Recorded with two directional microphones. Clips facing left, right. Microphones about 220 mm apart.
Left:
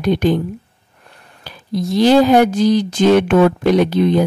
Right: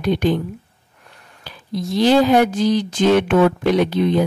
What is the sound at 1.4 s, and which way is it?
Speech, 40° left (ahead or behind).